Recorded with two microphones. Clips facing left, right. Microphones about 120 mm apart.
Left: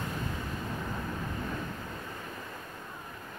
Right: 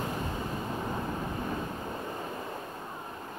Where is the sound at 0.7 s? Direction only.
30° right (ahead or behind).